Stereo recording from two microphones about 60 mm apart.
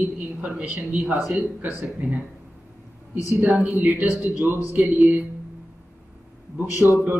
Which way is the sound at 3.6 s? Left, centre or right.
Right.